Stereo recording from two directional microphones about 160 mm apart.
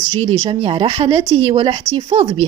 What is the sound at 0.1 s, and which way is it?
Speech, 30° right (ahead or behind).